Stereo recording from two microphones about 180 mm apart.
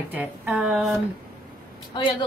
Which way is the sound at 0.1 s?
5° right (ahead or behind).